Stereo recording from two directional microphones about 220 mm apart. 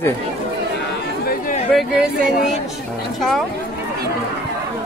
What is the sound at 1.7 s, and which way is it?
Speech, centre (ahead or behind).